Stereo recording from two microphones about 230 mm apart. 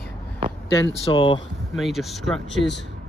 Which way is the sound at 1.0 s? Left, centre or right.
Left.